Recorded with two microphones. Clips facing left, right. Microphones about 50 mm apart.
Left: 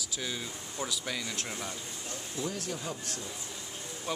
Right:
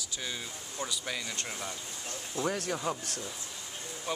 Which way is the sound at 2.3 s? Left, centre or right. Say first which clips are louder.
Right 4 dB; right.